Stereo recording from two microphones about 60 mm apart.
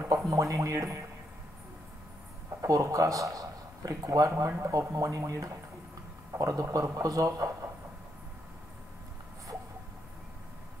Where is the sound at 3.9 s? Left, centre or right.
Right.